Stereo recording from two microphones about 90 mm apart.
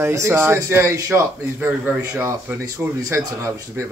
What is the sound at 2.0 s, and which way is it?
Speech, 40° right (ahead or behind).